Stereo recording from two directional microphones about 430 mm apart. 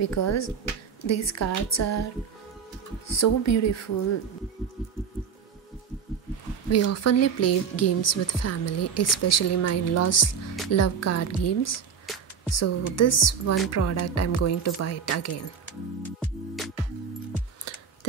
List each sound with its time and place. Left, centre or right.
0.0 s speech: left
3.1 s speech: left
6.7 s speech: left
12.1 s music: centre
12.5 s speech: left
16.2 s music: centre
17.7 s a sound: left